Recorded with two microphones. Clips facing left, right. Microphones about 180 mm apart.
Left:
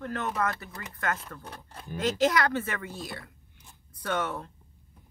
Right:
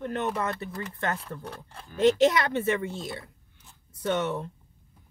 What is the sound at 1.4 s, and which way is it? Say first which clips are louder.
Speech: right 3 dB; 5° left (ahead or behind).